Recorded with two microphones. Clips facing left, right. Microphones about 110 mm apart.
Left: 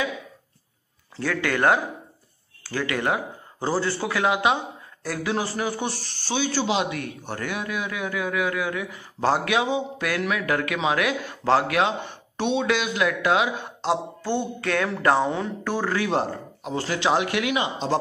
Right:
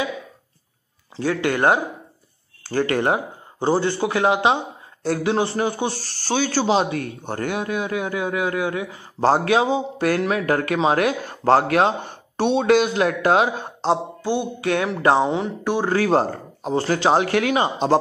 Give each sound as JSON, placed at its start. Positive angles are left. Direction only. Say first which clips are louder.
{"t": 1.1, "sound": "a man's voice", "louder": "right 4 dB", "side_deg": -20}
{"t": 2.6, "sound": "a man's voice", "louder": "right 6 dB", "side_deg": -35}
{"t": 6.5, "sound": "a man's voice", "louder": "right 6 dB", "side_deg": -35}
{"t": 14.2, "sound": "a man's voice", "louder": "right 3 dB", "side_deg": -15}
{"t": 15.9, "sound": "a man's voice", "louder": "right 7 dB", "side_deg": -40}